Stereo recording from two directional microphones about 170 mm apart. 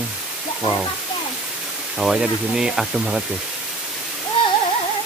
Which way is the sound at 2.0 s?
5° right (ahead or behind).